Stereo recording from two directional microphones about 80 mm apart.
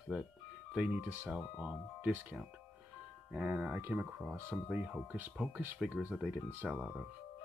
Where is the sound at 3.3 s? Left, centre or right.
Centre.